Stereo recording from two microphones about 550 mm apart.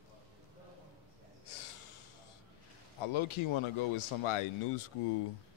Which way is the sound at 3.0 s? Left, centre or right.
Left.